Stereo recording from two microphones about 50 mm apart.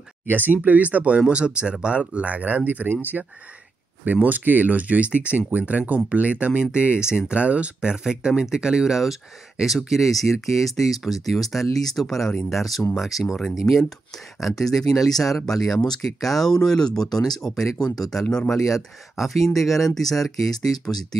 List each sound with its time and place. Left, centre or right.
0.3 s speech: right; by 20.2 s centre